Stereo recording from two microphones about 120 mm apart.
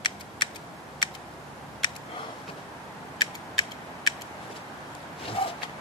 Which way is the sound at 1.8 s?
40° left (ahead or behind).